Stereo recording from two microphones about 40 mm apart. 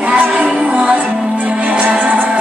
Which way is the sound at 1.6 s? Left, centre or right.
Right.